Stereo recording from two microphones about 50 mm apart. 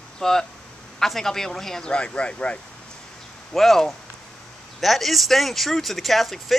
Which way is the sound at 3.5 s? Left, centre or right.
Centre.